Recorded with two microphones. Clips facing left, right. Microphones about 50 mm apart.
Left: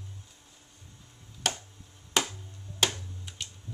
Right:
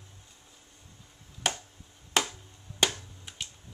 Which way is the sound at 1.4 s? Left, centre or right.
Centre.